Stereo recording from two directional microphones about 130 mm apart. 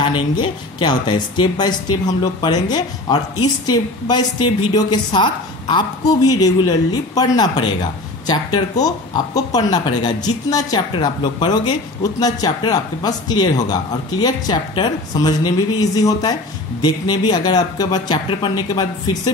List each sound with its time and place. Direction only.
0.0 s a woman's voice: 40° left (ahead or behind)